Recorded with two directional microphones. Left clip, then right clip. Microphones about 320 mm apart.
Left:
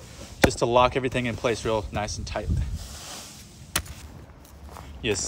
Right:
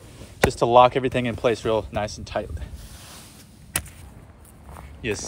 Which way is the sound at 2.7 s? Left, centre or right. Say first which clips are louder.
Left 5 dB; left.